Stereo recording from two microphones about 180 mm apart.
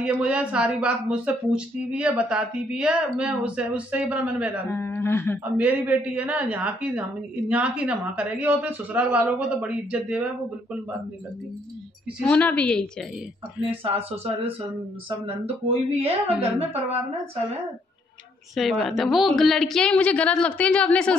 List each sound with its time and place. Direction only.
0.0 s a woman's voice: 5° right (ahead or behind)
4.6 s speech: 15° left (ahead or behind)
5.4 s a woman's voice: 10° right (ahead or behind)
12.2 s speech: 10° left (ahead or behind)
13.8 s speech: 35° right (ahead or behind)
18.5 s a woman's voice: centre (ahead or behind)